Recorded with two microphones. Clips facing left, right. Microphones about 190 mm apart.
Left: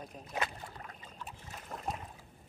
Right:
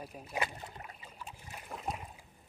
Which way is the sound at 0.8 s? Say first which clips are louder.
Left 1 dB; 10° right (ahead or behind).